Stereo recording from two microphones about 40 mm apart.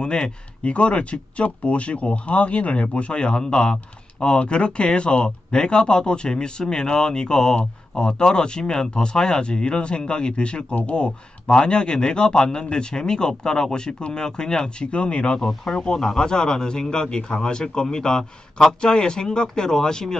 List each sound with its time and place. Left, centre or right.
0.0 s speech: left
15.4 s speech: centre